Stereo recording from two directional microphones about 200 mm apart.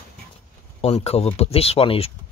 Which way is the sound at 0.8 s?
30° left (ahead or behind).